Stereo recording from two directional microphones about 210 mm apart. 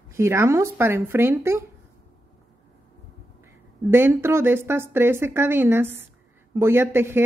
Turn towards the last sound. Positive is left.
turn(degrees=-10)  # may be behind; listen again after turning